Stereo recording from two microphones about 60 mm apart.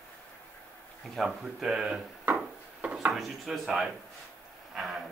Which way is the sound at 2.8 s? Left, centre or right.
Right.